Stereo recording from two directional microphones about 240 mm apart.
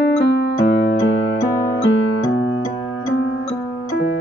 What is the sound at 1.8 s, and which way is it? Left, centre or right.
Music, left.